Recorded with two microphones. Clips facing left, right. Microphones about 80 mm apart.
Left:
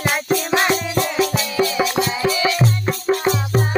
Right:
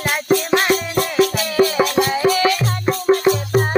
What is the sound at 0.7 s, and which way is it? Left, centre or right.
Music, right.